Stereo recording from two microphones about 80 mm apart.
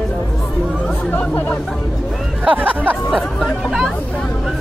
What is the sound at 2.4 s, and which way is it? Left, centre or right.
Speech, centre.